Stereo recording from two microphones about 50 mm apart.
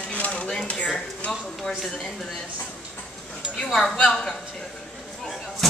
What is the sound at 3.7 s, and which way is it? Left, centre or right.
Speech, centre.